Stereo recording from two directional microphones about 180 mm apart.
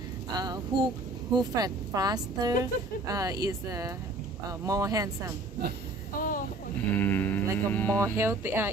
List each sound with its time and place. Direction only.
0.3 s a woman's voice: 20° right (ahead or behind)
6.1 s a sound: 50° left (ahead or behind)
6.9 s speech: 10° left (ahead or behind)
8.0 s speech: 15° right (ahead or behind)